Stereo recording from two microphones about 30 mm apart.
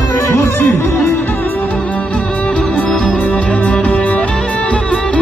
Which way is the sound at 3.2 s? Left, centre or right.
Left.